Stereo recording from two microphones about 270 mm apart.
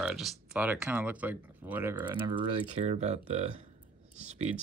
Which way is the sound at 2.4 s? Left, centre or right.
Right.